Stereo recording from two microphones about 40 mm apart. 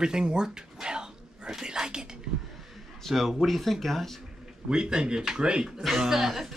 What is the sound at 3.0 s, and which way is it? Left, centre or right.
Speech, centre.